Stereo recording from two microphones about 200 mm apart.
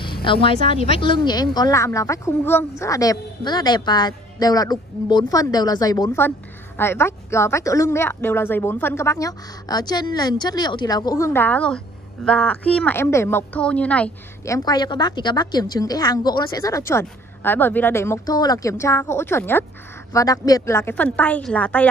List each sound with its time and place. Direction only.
0.0 s a woman's voice: 25° left (ahead or behind); by 21.8 s 5° left (ahead or behind)